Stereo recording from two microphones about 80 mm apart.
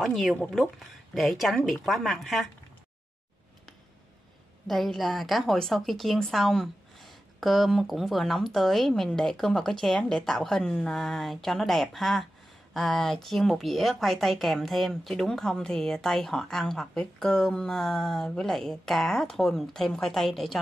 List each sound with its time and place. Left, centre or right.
0.0 s a woman's voice: centre
4.6 s a woman's voice: centre